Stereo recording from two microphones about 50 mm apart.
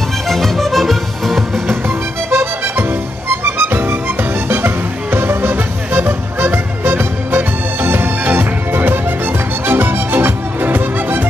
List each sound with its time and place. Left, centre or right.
0.3 s music: centre
1.7 s music: right